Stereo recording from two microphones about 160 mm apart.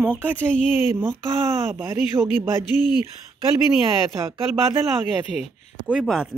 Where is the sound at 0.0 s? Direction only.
10° right (ahead or behind).